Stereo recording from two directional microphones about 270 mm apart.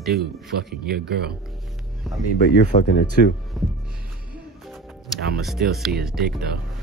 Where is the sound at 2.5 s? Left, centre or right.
Left.